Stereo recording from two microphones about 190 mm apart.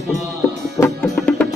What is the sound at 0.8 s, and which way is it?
Music, 5° left (ahead or behind).